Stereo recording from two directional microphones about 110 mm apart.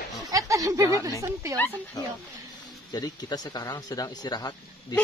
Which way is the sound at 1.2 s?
25° right (ahead or behind).